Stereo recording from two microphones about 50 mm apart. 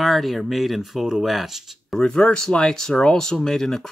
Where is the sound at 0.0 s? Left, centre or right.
Centre.